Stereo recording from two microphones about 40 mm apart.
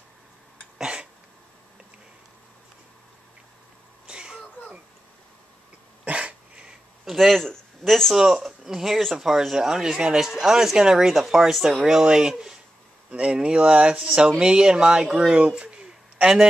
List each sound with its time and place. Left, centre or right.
0.7 s throat clearing: right
4.1 s a sound: right
6.0 s dog: right
7.1 s a man's voice: centre
8.1 s speech: centre
15.3 s a sound: right